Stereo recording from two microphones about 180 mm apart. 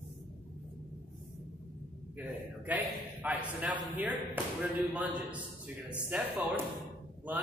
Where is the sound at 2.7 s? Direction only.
10° right (ahead or behind).